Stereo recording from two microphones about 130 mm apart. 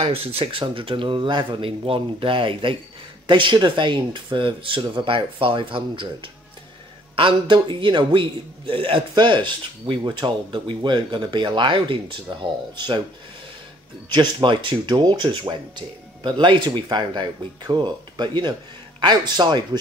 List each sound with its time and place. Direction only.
0.0 s a man's voice: 50° right (ahead or behind)
14.0 s a man's voice: 35° right (ahead or behind)